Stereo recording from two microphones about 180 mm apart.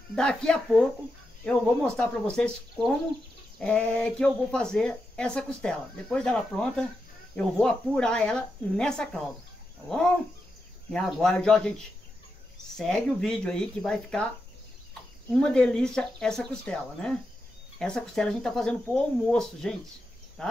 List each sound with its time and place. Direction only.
0.1 s speech: 5° left (ahead or behind)
15.3 s speech: 5° left (ahead or behind)